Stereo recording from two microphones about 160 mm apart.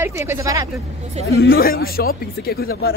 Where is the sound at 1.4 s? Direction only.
70° left (ahead or behind).